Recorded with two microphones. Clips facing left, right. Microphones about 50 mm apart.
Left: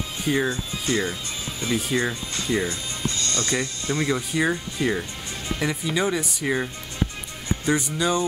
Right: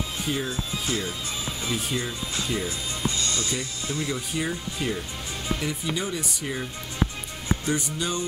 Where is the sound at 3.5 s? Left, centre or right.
Left.